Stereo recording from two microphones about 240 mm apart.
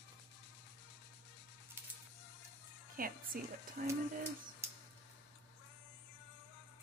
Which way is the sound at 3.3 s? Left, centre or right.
Right.